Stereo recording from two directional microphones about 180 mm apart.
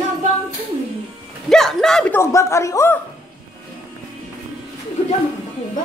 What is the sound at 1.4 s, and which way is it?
Speech, centre (ahead or behind).